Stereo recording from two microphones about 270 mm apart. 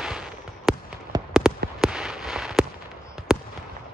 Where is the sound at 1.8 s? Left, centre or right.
Centre.